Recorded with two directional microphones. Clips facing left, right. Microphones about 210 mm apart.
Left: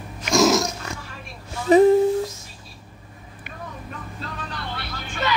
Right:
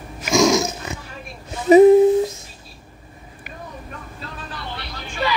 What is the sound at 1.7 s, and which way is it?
Humming, 10° right (ahead or behind).